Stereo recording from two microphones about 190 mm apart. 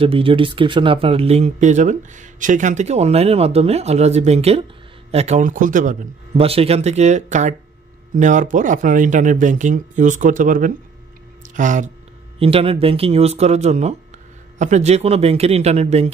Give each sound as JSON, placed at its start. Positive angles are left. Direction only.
{"t": 0.0, "sound": "speech", "side_deg": -30}
{"t": 12.4, "sound": "speech", "side_deg": -30}